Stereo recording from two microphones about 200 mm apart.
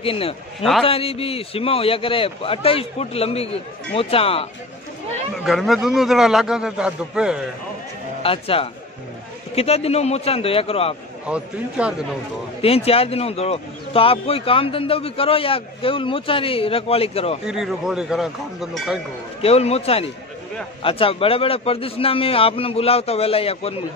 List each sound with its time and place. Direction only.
0.0 s speech: 30° left (ahead or behind)
5.4 s a man's voice: centre (ahead or behind)
8.2 s a man's voice: 30° left (ahead or behind)
11.2 s a man's voice: 5° right (ahead or behind)
12.6 s speech: 30° left (ahead or behind)
17.5 s a man's voice: centre (ahead or behind)
19.4 s a man's voice: 30° left (ahead or behind)